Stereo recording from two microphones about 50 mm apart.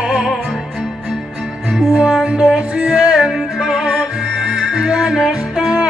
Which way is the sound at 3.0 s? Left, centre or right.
Centre.